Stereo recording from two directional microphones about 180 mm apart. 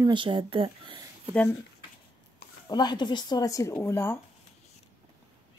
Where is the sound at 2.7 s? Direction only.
25° left (ahead or behind).